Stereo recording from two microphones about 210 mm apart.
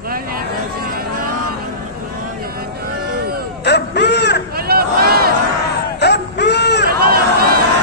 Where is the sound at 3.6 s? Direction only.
55° left (ahead or behind).